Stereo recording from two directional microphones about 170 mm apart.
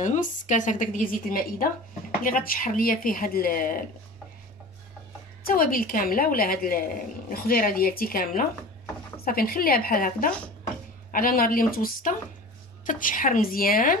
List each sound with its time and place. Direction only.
0.0 s a woman's voice: 45° left (ahead or behind)
5.4 s a woman's voice: 55° left (ahead or behind)